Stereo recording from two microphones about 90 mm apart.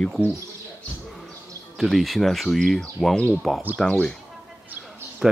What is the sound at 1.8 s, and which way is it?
Speech, centre (ahead or behind).